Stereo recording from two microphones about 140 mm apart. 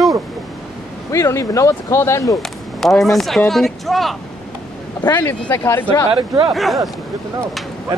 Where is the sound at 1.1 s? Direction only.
20° left (ahead or behind).